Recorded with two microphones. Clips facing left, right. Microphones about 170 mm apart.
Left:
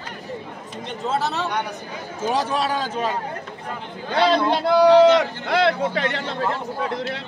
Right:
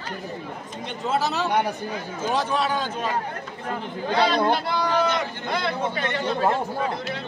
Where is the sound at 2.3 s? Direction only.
35° left (ahead or behind).